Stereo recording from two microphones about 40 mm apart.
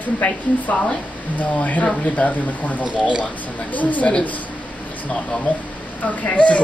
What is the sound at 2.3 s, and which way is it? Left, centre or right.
Speech, left.